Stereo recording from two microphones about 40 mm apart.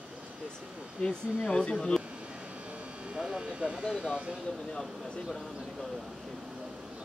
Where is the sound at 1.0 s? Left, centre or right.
Centre.